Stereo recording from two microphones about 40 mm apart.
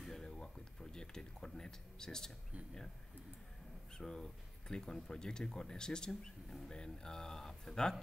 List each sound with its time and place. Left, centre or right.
0.0 s a sound: centre
0.9 s speech: centre
3.9 s speech: centre